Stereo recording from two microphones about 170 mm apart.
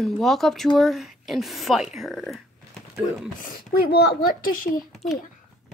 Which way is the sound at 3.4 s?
60° left (ahead or behind).